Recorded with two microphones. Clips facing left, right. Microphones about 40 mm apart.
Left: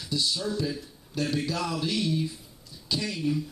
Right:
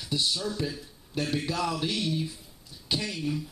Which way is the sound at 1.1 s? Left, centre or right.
Right.